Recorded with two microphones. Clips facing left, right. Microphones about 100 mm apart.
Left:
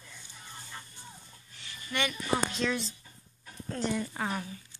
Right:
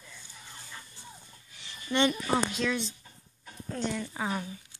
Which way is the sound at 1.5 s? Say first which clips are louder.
Right 6 dB; 25° right (ahead or behind).